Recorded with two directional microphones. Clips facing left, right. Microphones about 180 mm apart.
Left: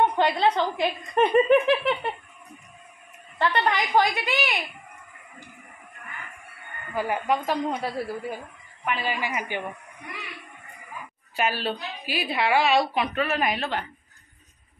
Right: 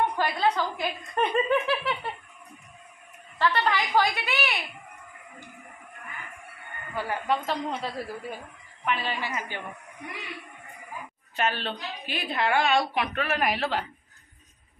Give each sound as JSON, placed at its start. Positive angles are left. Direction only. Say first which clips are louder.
{"t": 0.0, "sound": "a woman's voice", "louder": "left 4 dB", "side_deg": 20}
{"t": 3.3, "sound": "a woman's voice", "louder": "left 1 dB", "side_deg": 15}
{"t": 7.0, "sound": "a woman's voice", "louder": "left 3 dB", "side_deg": 10}
{"t": 11.3, "sound": "a woman's voice", "louder": "left 2 dB", "side_deg": 10}